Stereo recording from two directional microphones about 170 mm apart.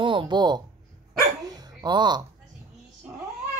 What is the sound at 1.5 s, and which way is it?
Dog, 25° right (ahead or behind).